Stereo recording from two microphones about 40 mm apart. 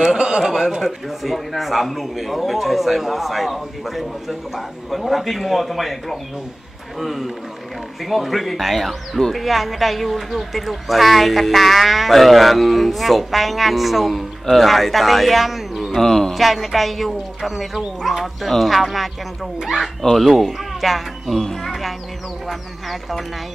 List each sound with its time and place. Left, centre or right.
0.0 s a sound: centre
0.4 s a man's voice: centre
0.8 s speech: centre
16.0 s mantra: centre
16.3 s speech: centre
22.5 s speech: centre